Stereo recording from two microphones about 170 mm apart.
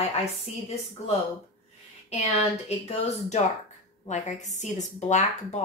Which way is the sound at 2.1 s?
40° left (ahead or behind).